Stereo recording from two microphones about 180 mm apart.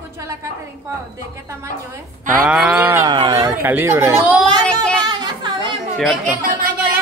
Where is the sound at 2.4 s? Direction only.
5° right (ahead or behind).